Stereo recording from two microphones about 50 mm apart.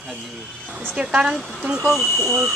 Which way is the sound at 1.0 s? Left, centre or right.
Centre.